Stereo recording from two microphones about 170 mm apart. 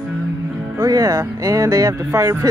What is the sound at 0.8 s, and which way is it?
Speech, 20° right (ahead or behind).